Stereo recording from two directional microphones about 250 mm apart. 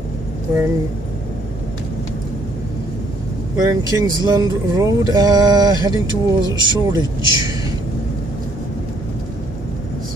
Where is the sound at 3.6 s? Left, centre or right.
Centre.